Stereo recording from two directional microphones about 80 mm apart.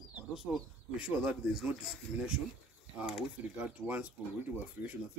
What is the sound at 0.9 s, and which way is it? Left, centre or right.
A man's voice, centre.